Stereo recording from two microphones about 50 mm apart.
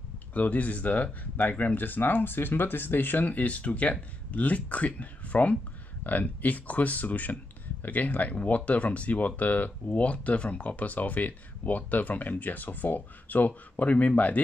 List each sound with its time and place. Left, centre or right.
0.3 s speech: left